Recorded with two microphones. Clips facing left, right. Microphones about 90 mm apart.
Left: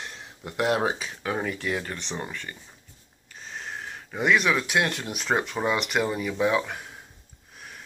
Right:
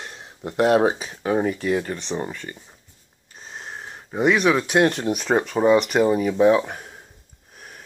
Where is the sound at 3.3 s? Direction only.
25° right (ahead or behind).